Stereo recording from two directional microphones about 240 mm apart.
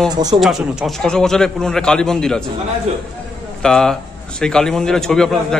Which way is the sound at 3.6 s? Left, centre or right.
Centre.